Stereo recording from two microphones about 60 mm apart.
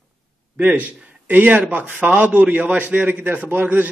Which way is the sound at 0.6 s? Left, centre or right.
Right.